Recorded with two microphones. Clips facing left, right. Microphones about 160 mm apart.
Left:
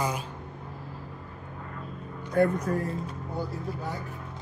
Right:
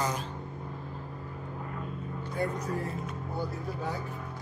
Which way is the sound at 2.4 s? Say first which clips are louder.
Left 9 dB; 60° left (ahead or behind).